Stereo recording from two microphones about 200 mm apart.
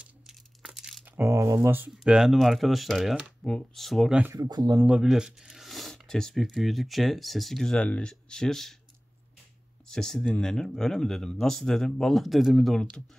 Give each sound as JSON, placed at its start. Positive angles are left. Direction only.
{"t": 0.0, "sound": "crumpling", "side_deg": -5}
{"t": 1.2, "sound": "speech", "side_deg": -15}
{"t": 4.4, "sound": "speech", "side_deg": -20}
{"t": 4.8, "sound": "speech", "side_deg": -5}
{"t": 9.8, "sound": "speech", "side_deg": 0}